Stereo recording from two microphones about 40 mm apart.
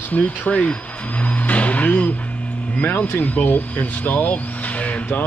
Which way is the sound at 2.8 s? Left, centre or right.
Left.